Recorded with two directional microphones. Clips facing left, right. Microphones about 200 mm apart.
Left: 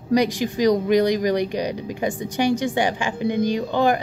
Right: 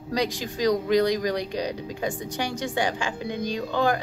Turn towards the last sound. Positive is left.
turn(degrees=20)  # may be behind; listen again after turning